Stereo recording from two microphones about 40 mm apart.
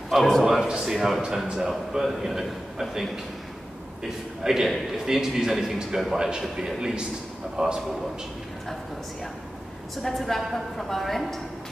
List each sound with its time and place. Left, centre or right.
0.1 s a man's voice: centre
0.5 s a man's voice: centre
4.4 s a man's voice: centre
6.1 s a man's voice: centre
10.0 s a woman's voice: centre